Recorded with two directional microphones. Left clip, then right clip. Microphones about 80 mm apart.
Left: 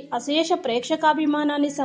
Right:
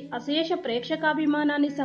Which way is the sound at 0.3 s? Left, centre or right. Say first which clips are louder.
Left 4 dB; left.